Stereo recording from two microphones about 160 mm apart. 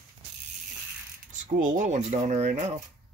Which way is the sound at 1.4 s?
55° right (ahead or behind).